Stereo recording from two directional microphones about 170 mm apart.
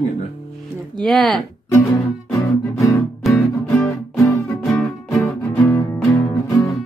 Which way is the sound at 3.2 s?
Centre (ahead or behind).